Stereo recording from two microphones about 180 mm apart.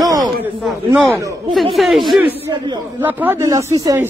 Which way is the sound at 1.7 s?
Centre (ahead or behind).